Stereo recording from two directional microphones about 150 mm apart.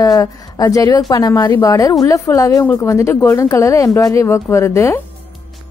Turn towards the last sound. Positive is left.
turn(degrees=20)  # may be behind; listen again after turning